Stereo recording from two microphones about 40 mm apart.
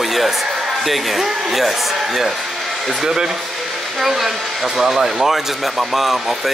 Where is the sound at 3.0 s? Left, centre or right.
Centre.